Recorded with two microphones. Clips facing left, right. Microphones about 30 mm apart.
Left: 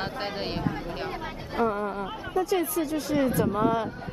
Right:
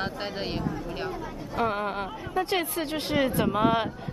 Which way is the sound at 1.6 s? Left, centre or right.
Right.